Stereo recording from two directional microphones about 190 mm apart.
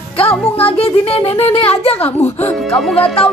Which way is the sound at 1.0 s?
30° left (ahead or behind).